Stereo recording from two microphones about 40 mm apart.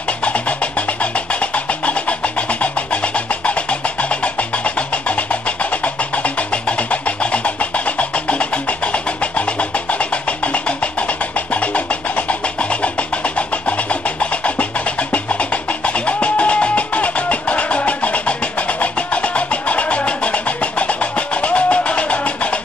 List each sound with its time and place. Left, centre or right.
0.2 s music: left